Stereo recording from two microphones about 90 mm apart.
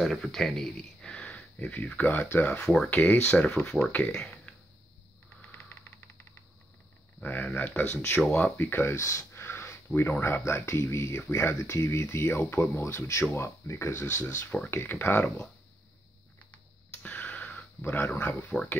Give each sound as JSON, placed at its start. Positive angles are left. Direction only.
{"t": 0.0, "sound": "speech", "side_deg": 5}
{"t": 7.2, "sound": "speech", "side_deg": 15}
{"t": 12.8, "sound": "speech", "side_deg": 30}
{"t": 16.9, "sound": "a sound", "side_deg": 15}